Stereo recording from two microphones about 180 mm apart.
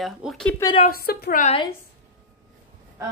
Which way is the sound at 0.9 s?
60° left (ahead or behind).